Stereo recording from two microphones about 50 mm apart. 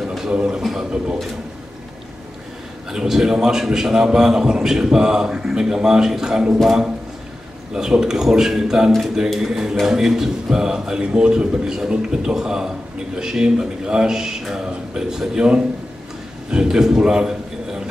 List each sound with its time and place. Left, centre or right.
0.3 s a man's voice: centre
2.9 s a man's voice: centre
7.7 s a man's voice: centre